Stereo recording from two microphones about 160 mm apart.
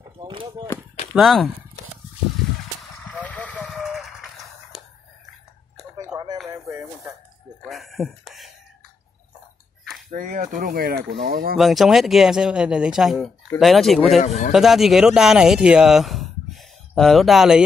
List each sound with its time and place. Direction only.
0.0 s chop: 30° right (ahead or behind)
1.1 s speech: centre (ahead or behind)
2.8 s a sound: 10° left (ahead or behind)
6.0 s a sound: 25° right (ahead or behind)
7.6 s a sound: centre (ahead or behind)
10.0 s speech: 55° right (ahead or behind); by 11.1 s 70° right (ahead or behind)
11.1 s speech: 80° right
11.5 s speech: centre (ahead or behind)
14.2 s speech: 45° left (ahead or behind)
14.5 s speech: centre (ahead or behind)